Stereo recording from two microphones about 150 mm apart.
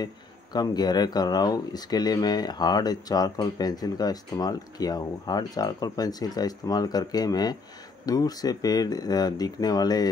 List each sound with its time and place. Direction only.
0.0 s speech: 25° left (ahead or behind)